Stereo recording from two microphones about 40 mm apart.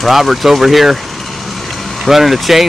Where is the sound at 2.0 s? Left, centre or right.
Centre.